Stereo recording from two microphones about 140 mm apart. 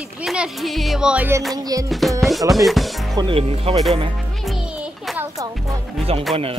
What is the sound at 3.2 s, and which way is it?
Speech, 40° right (ahead or behind).